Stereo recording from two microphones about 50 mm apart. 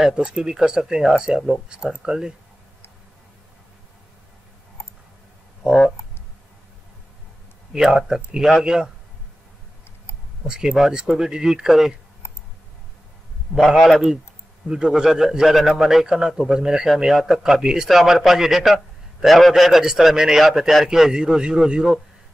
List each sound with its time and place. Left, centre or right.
0.1 s speech: centre
5.6 s speech: right
7.7 s speech: centre
10.4 s speech: centre
12.2 s clicking: left
13.7 s a man's voice: centre
14.6 s speech: right
15.0 s a man's voice: centre